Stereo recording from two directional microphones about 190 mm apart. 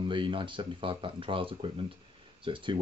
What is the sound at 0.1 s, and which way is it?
Speech, 25° right (ahead or behind).